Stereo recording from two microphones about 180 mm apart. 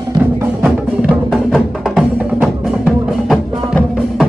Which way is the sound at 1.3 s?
5° left (ahead or behind).